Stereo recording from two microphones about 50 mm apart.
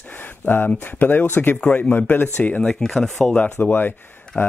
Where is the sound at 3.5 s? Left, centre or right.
Left.